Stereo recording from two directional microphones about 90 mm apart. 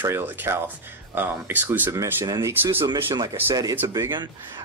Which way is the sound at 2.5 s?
25° right (ahead or behind).